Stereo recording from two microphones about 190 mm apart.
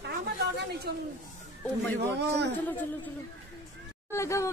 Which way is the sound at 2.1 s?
60° right (ahead or behind).